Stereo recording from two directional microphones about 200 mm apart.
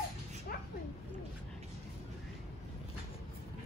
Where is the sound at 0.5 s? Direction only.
45° left (ahead or behind).